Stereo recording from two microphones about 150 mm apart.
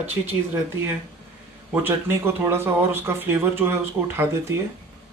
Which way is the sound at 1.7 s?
15° right (ahead or behind).